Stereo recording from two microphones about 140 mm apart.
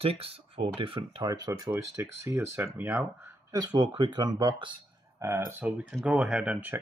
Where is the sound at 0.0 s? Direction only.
40° right (ahead or behind); by 3.1 s 15° right (ahead or behind).